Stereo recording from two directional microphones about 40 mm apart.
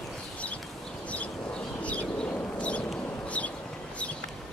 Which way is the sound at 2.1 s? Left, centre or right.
Left.